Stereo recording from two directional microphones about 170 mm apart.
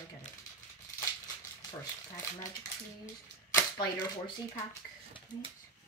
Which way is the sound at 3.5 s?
25° left (ahead or behind).